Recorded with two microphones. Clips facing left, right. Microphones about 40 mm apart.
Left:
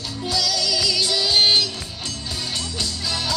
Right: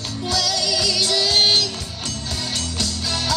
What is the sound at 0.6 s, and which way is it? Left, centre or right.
Music, right.